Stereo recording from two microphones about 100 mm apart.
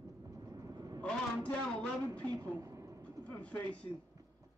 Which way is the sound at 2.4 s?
30° right (ahead or behind).